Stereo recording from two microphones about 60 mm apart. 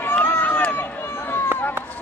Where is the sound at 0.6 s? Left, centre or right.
Left.